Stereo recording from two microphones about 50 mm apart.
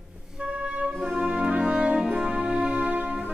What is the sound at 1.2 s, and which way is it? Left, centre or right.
Music, centre.